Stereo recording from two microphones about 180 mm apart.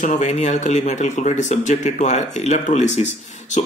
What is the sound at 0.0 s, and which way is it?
Speech, 45° left (ahead or behind).